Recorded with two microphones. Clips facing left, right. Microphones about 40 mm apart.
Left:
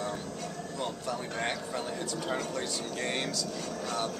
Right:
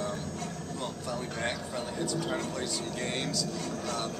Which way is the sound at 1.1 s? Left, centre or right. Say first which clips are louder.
Right 2 dB; centre.